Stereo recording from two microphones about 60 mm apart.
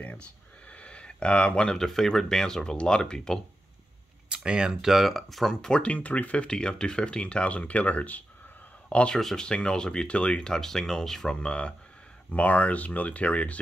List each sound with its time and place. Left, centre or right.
0.0 s speech: left
4.3 s speech: centre
9.2 s speech: centre; by 13.6 s left